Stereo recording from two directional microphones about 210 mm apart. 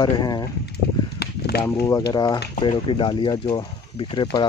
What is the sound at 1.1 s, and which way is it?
Chop, 50° left (ahead or behind).